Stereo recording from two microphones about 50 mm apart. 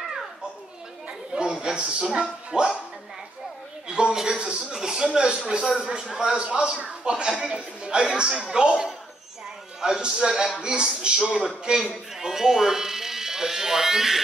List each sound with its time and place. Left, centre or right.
1.3 s speech: centre
3.8 s a man's voice: centre